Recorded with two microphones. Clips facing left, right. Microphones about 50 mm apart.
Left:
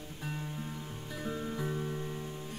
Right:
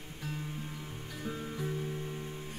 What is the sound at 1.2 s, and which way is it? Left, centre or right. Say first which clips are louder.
Music: left 2 dB; centre.